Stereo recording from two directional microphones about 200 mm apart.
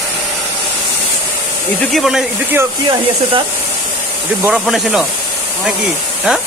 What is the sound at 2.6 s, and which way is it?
Speech, 20° right (ahead or behind).